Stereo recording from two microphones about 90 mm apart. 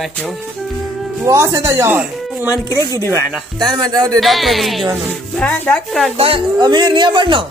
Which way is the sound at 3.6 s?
50° right (ahead or behind).